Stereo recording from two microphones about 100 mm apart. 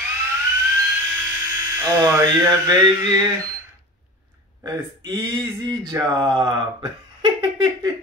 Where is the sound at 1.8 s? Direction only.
35° right (ahead or behind).